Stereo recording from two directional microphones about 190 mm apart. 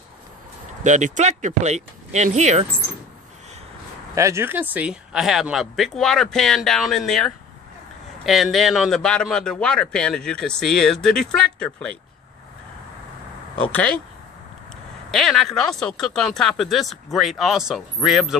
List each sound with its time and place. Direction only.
0.8 s speech: 40° right (ahead or behind)
4.1 s a man's voice: 15° right (ahead or behind); by 11.9 s 5° left (ahead or behind)
13.7 s speech: 10° left (ahead or behind)
15.0 s a man's voice: centre (ahead or behind)